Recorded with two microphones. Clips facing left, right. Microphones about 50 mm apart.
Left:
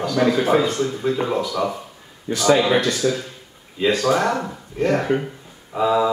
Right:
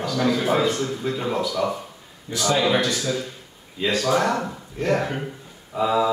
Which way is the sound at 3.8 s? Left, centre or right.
Centre.